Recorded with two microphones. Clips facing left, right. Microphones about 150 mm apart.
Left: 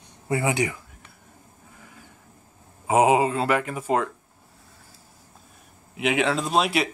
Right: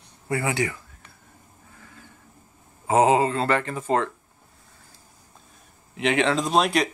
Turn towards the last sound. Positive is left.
turn(degrees=5)  # may be behind; listen again after turning